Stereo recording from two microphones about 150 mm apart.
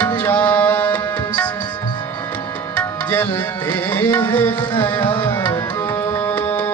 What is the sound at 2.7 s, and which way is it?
Tabla, 10° left (ahead or behind).